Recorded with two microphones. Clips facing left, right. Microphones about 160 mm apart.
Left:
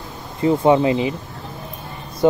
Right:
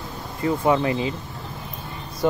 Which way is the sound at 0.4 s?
25° left (ahead or behind).